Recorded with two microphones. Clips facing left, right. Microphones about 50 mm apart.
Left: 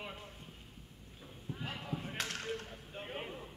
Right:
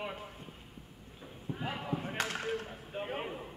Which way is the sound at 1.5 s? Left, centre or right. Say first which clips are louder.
Right 5 dB; centre.